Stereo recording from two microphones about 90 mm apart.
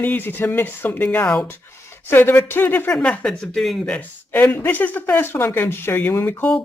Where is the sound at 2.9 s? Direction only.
10° left (ahead or behind).